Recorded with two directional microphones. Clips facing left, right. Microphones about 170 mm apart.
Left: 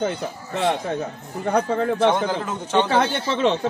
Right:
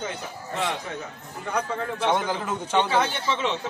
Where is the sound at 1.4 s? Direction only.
45° left (ahead or behind).